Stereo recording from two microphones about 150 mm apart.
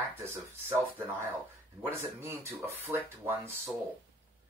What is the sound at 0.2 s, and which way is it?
Speech, 15° right (ahead or behind).